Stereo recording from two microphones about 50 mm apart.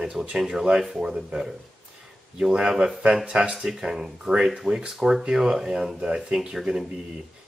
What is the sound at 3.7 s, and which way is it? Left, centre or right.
Speech, centre.